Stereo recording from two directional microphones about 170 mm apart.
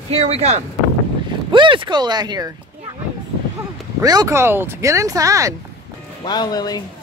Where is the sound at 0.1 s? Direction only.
40° right (ahead or behind).